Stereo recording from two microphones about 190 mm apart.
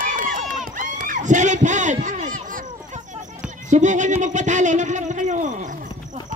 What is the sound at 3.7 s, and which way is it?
Speech, 40° right (ahead or behind).